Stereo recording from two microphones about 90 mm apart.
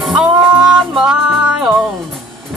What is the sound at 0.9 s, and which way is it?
Music, 10° right (ahead or behind).